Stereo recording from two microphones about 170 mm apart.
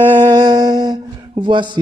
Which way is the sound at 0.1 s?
30° right (ahead or behind).